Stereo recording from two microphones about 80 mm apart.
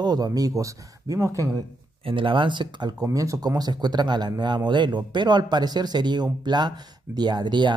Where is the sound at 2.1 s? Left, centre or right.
Right.